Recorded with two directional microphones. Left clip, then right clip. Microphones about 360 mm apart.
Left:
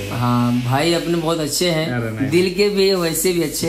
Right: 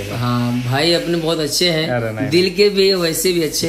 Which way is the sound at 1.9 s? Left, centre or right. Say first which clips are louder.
Right 4 dB; centre.